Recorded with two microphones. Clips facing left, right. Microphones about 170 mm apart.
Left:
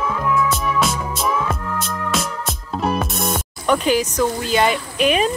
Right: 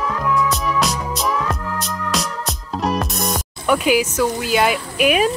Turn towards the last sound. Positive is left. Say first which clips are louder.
# right 1 dB
turn(degrees=-5)  # may be behind; listen again after turning